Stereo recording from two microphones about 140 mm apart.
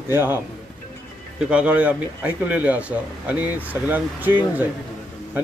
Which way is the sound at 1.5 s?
10° right (ahead or behind).